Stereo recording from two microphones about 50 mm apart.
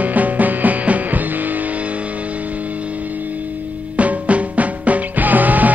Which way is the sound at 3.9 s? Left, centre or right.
Right.